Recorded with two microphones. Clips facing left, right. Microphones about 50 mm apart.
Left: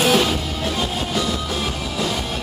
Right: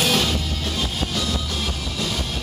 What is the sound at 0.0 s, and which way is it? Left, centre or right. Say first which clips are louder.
Music: left 4 dB; centre.